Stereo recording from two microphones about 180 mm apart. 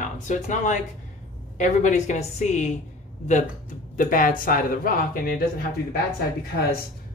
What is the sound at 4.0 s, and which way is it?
Speech, 50° left (ahead or behind).